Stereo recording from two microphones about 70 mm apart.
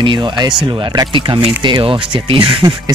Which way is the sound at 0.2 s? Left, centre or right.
Right.